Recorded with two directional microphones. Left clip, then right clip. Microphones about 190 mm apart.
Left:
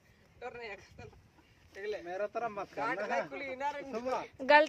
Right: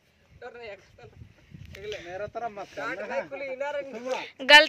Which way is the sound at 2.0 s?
20° right (ahead or behind).